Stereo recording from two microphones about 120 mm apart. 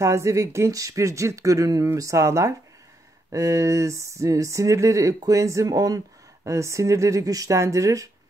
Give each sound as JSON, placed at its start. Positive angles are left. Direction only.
{"t": 0.0, "sound": "speech", "side_deg": -25}